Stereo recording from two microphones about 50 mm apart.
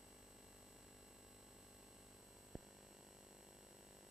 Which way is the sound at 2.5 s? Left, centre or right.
Centre.